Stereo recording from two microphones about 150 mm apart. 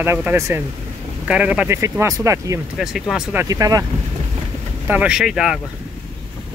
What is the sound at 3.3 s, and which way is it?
Speech, 20° right (ahead or behind).